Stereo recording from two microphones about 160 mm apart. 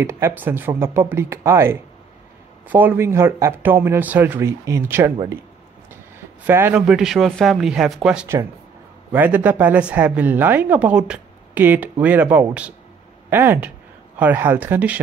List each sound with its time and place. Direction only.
0.0 s speech: 15° right (ahead or behind)
6.4 s speech: 10° right (ahead or behind)